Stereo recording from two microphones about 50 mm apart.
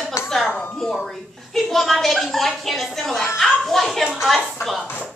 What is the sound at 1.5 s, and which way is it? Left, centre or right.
Speech, centre.